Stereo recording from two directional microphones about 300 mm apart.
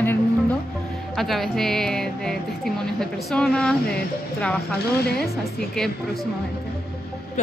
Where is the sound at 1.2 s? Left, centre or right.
Centre.